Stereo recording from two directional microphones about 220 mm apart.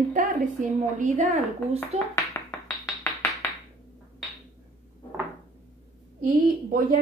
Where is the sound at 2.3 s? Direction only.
15° left (ahead or behind).